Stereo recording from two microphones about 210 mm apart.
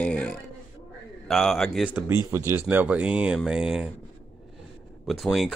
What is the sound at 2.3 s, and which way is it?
Speech, 10° right (ahead or behind).